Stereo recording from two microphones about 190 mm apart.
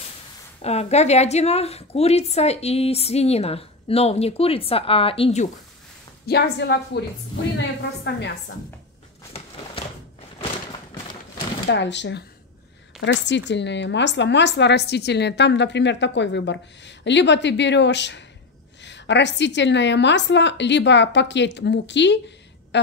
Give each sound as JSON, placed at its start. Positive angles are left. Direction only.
{"t": 0.6, "sound": "a woman's voice", "side_deg": 35}
{"t": 6.2, "sound": "a woman's voice", "side_deg": 60}
{"t": 11.7, "sound": "speech", "side_deg": 70}